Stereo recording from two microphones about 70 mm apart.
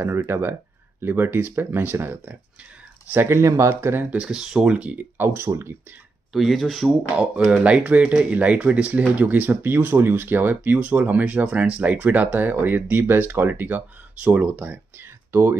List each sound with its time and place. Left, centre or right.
0.0 s speech: right
4.1 s speech: centre
5.1 s speech: right
6.3 s speech: centre
7.2 s speech: centre
14.6 s a sound: right